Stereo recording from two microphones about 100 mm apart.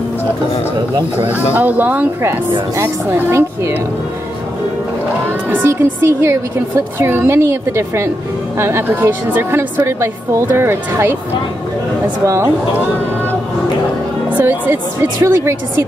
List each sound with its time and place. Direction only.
1.5 s speech: 15° right (ahead or behind)
5.5 s speech: 25° right (ahead or behind)
12.3 s speech: 25° right (ahead or behind)
14.3 s speech: 20° right (ahead or behind)